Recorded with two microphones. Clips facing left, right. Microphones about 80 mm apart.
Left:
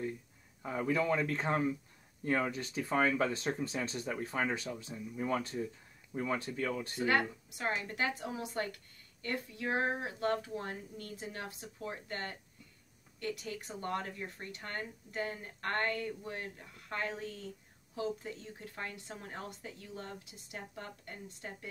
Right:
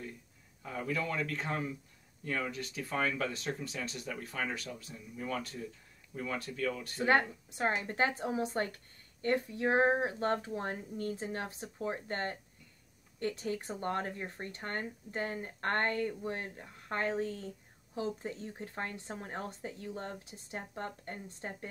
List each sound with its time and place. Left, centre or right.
0.6 s speech: left
7.0 s a woman's voice: right